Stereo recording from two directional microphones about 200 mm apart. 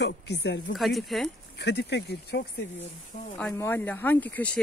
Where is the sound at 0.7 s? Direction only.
Centre (ahead or behind).